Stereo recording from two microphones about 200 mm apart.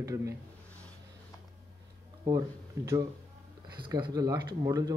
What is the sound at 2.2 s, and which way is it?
Speech, 15° right (ahead or behind).